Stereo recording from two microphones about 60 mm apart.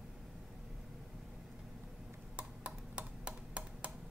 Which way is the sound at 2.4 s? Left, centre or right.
Centre.